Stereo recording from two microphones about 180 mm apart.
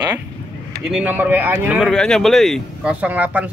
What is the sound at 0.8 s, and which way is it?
Speech, 5° right (ahead or behind).